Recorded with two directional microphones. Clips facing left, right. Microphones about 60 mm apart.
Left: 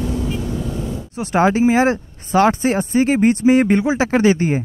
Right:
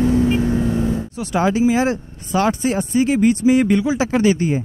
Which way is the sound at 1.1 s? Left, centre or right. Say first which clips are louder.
Left 6 dB; left.